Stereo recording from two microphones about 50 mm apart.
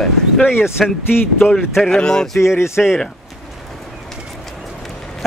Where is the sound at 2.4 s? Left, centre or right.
Left.